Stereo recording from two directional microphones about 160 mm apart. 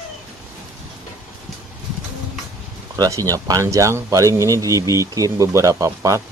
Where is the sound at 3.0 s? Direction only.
20° right (ahead or behind).